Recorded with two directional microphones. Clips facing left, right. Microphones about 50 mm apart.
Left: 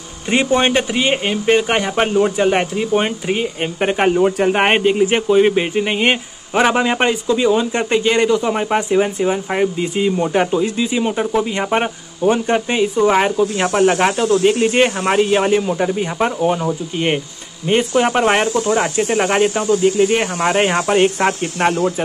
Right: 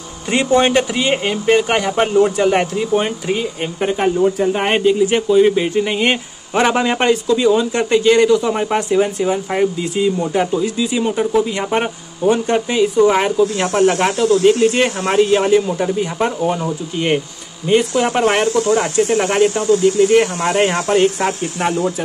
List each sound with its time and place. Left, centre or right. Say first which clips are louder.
0.3 s speech: right 1 dB; left
5.0 s speech: right 1 dB; left
9.8 s speech: even; left
11.0 s speech: right 3 dB; centre
14.1 s speech: right 2 dB; left; by 17.2 s centre
17.6 s speech: even; left
18.1 s speech: even; centre; by 21.7 s left